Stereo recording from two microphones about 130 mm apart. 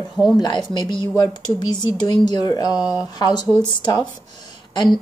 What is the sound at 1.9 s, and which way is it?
Speech, 30° left (ahead or behind).